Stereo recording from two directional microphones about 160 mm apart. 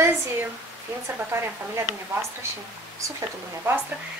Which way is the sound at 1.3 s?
15° right (ahead or behind).